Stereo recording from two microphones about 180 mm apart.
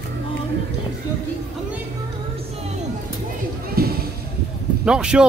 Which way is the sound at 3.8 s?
55° right (ahead or behind).